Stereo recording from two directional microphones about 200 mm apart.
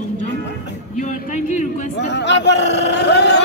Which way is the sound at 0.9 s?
40° left (ahead or behind).